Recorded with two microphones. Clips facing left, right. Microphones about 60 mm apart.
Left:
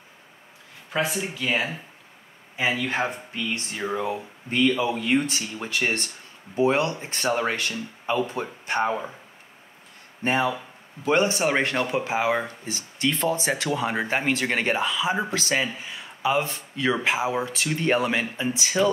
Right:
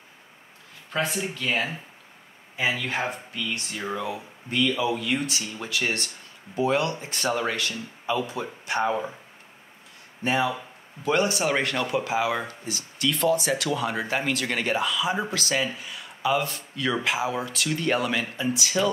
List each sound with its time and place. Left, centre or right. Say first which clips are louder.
0.9 s speech: left 1 dB; centre
3.3 s speech: left 2 dB; left
10.2 s speech: left 1 dB; left